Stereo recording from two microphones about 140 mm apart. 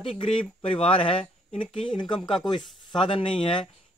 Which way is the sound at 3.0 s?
40° left (ahead or behind).